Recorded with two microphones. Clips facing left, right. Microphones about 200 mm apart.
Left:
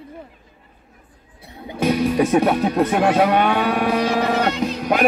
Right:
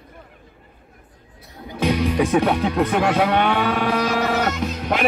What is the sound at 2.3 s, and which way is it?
Speech, 15° left (ahead or behind).